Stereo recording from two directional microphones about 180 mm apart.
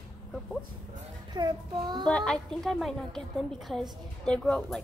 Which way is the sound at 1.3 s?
25° right (ahead or behind).